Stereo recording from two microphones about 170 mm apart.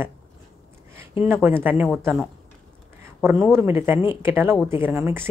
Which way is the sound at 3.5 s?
15° right (ahead or behind).